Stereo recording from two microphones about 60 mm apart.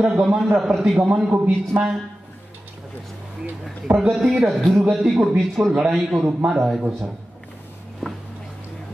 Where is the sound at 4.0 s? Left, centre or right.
Centre.